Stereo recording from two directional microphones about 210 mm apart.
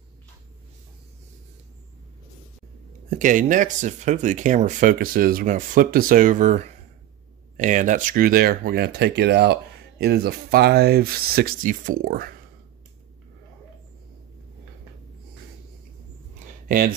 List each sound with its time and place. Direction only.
3.1 s speech: 40° right (ahead or behind)
16.6 s speech: 45° right (ahead or behind)